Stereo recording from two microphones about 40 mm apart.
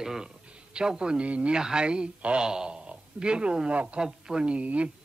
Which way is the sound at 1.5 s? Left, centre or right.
Centre.